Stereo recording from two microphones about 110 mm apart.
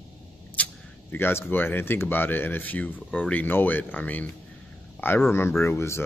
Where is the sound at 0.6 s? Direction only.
10° left (ahead or behind).